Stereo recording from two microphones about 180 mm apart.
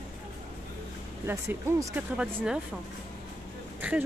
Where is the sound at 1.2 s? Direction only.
15° right (ahead or behind).